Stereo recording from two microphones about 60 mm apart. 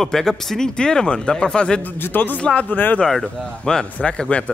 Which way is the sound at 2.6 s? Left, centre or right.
Left.